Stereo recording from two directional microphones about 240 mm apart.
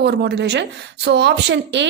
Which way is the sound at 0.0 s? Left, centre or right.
Right.